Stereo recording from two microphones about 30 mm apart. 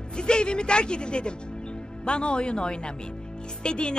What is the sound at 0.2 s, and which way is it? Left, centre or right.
Speech, left.